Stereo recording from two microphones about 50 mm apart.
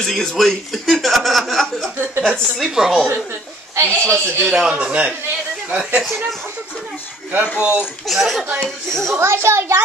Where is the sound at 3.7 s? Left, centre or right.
Right.